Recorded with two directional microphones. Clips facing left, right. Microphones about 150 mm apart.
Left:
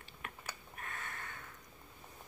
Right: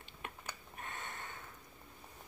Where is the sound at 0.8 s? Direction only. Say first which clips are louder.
Right 1 dB; 25° right (ahead or behind).